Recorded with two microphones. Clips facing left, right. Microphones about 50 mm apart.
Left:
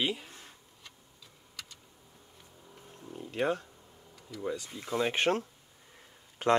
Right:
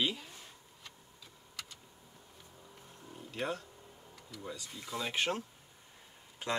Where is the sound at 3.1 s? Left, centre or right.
Left.